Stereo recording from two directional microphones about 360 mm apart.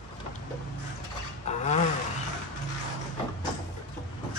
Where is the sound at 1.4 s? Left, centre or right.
Centre.